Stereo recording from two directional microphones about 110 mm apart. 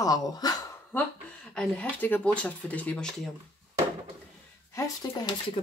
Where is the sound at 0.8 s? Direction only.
10° left (ahead or behind).